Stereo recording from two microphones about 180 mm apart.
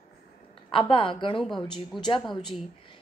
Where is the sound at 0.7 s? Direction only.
30° left (ahead or behind).